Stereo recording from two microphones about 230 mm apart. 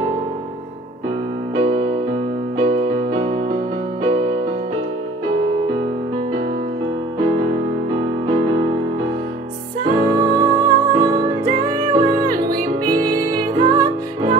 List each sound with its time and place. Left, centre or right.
1.5 s music: right
7.2 s music: right
9.8 s music: right